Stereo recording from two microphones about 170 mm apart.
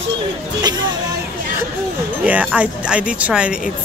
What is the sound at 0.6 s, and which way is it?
Music, 25° right (ahead or behind).